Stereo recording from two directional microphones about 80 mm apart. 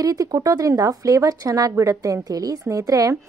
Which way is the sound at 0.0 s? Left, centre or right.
Right.